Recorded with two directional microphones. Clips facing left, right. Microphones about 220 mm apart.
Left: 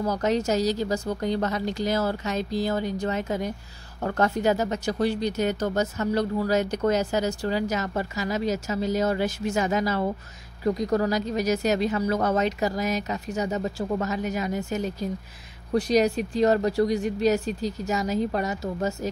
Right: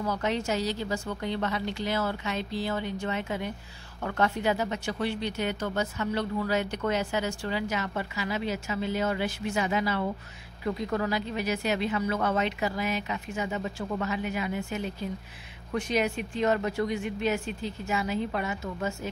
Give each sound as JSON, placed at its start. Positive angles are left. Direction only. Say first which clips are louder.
{"t": 0.0, "sound": "speech", "louder": "left 5 dB", "side_deg": 40}